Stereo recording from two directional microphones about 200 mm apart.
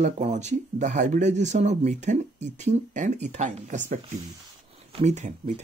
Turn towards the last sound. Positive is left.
turn(degrees=-35)  # may be behind; listen again after turning